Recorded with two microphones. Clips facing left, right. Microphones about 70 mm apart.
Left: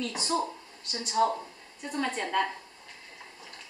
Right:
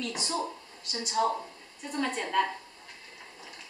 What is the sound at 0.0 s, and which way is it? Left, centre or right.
A woman's voice, centre.